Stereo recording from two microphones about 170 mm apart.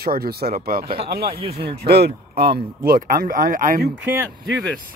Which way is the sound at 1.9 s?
70° right (ahead or behind).